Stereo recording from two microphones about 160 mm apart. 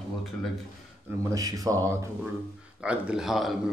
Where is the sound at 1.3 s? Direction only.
20° right (ahead or behind).